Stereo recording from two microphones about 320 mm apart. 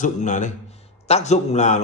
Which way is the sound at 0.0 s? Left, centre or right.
Left.